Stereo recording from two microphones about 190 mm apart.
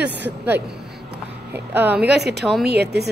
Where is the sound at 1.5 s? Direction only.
10° right (ahead or behind).